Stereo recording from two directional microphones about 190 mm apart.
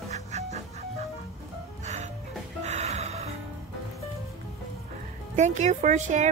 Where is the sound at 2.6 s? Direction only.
35° right (ahead or behind).